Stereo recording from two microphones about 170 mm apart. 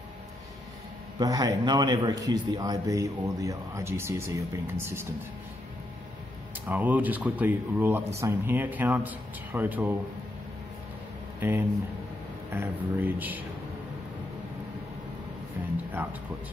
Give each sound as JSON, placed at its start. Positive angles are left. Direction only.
{"t": 1.2, "sound": "a man's voice", "side_deg": -20}
{"t": 6.7, "sound": "speech", "side_deg": -10}
{"t": 11.3, "sound": "speech", "side_deg": -10}
{"t": 15.9, "sound": "speech", "side_deg": -10}